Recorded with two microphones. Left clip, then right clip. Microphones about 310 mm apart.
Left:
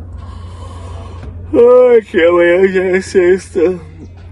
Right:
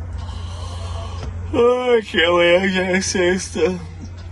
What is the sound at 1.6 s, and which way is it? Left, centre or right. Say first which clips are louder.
Speech: left 10 dB; centre.